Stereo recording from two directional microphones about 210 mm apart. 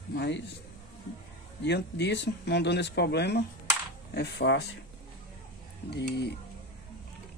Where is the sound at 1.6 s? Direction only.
55° left (ahead or behind).